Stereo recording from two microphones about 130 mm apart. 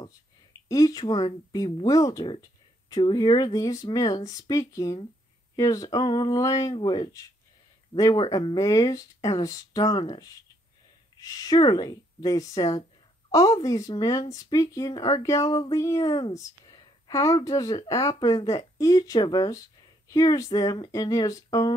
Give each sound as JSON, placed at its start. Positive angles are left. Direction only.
{"t": 0.0, "sound": "speech", "side_deg": 30}
{"t": 11.1, "sound": "speech", "side_deg": 25}